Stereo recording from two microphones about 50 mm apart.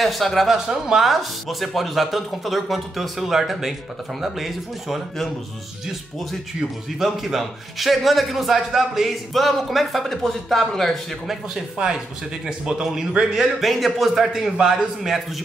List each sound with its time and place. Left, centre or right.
0.0 s speech: centre
0.5 s speech: centre
7.0 s speech: centre
11.5 s a man's voice: centre
13.6 s speech: centre